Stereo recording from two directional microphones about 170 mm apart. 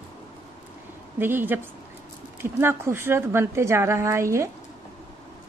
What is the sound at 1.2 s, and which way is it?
Speech, 10° right (ahead or behind).